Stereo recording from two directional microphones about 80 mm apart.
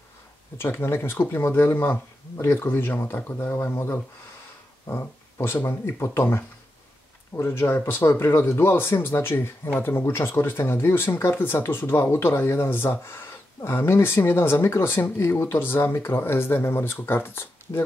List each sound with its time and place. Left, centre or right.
0.6 s speech: left